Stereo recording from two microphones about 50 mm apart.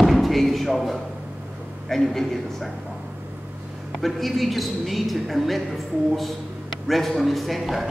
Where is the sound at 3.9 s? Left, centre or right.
Centre.